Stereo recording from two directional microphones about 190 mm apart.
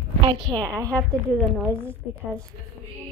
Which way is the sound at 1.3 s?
5° right (ahead or behind).